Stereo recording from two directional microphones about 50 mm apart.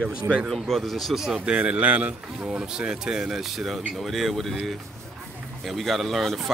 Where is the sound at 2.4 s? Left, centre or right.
Centre.